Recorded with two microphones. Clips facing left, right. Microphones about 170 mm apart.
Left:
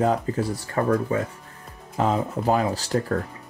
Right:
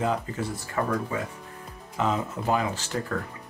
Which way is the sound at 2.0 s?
35° left (ahead or behind).